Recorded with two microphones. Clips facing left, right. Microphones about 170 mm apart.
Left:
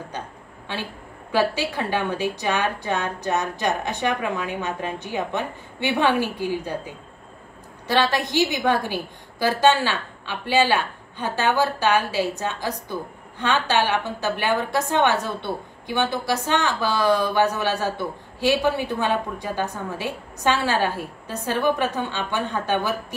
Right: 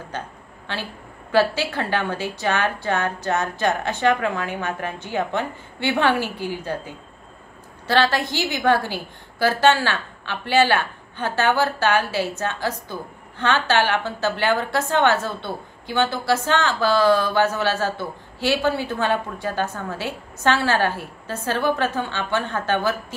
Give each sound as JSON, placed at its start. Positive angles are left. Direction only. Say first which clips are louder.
{"t": 1.3, "sound": "a woman's voice", "louder": "right 2 dB", "side_deg": 15}
{"t": 7.8, "sound": "a woman's voice", "louder": "right 1 dB", "side_deg": 15}